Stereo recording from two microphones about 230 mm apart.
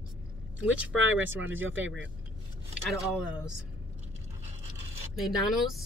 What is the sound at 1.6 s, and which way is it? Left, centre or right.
Speech, right.